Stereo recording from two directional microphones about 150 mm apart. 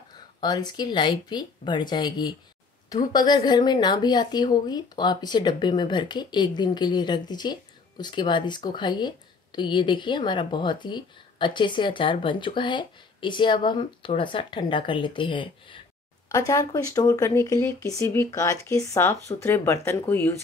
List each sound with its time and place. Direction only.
0.4 s speech: 30° left (ahead or behind)
16.3 s speech: 20° left (ahead or behind)